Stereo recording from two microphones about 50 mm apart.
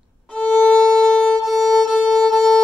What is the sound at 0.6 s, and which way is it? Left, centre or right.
Violin, centre.